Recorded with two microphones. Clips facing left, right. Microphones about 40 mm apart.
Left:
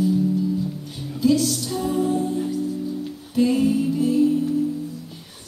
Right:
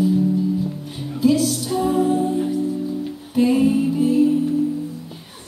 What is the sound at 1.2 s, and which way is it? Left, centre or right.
Music, centre.